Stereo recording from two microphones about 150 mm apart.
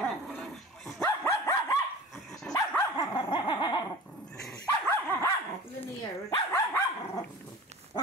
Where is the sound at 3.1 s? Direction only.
30° left (ahead or behind).